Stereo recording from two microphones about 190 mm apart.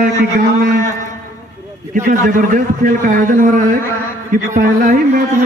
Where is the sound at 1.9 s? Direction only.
40° right (ahead or behind).